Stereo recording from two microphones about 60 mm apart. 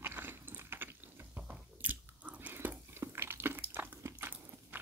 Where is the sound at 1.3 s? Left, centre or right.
Right.